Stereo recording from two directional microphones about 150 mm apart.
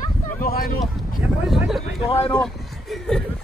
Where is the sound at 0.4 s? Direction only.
80° left.